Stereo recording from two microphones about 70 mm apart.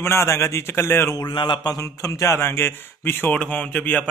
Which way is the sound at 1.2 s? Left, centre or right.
Left.